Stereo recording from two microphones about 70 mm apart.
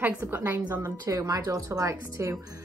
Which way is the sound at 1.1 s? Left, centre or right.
Right.